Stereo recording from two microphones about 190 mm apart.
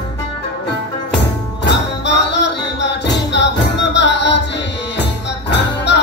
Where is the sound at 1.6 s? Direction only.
65° left (ahead or behind).